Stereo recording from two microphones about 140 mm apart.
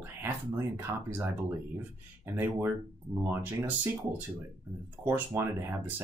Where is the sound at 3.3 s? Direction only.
15° right (ahead or behind).